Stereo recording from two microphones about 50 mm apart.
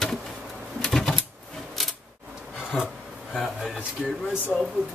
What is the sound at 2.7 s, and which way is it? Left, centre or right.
Rub, centre.